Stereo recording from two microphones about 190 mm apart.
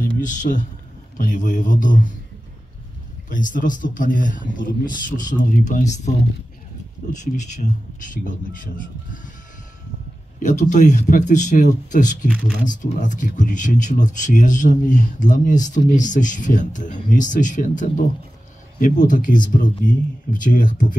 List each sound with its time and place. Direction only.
0.2 s speech: 40° left (ahead or behind)
3.3 s speech: 45° left (ahead or behind)
7.2 s speech: 40° left (ahead or behind)
10.4 s speech: 40° left (ahead or behind)